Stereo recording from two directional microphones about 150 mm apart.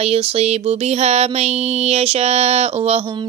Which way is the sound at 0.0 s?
40° right (ahead or behind).